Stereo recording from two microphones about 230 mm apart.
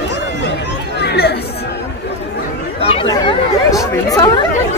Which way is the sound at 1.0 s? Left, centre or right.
Left.